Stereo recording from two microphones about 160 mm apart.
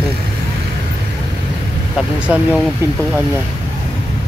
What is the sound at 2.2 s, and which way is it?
Speech, 10° right (ahead or behind).